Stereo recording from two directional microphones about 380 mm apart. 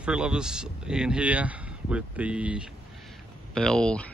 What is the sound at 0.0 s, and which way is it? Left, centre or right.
Speech, centre.